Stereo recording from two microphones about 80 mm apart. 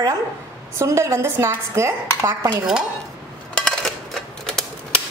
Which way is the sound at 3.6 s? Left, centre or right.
Centre.